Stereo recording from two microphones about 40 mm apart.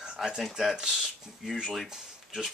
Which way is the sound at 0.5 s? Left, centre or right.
Centre.